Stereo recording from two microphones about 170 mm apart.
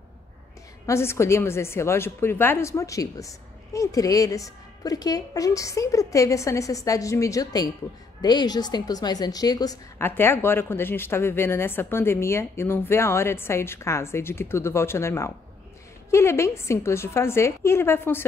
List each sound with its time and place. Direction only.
0.8 s a woman's voice: 15° left (ahead or behind)